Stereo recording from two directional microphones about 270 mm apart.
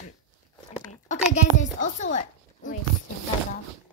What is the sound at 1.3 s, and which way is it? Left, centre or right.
A child's voice, left.